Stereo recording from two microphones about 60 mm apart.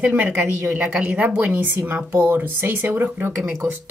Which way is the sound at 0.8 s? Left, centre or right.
Right.